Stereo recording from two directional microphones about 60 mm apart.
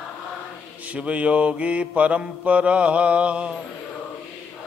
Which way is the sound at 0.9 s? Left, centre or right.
Right.